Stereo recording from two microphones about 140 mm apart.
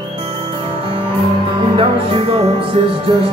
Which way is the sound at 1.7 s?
40° right (ahead or behind).